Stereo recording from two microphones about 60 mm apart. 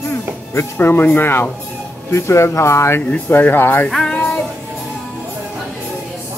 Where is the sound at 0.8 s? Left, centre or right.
Left.